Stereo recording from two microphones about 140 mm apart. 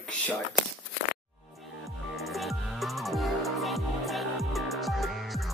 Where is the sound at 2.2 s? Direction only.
Centre (ahead or behind).